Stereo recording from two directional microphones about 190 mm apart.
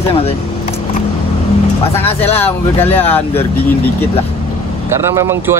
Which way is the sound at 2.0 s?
30° left (ahead or behind).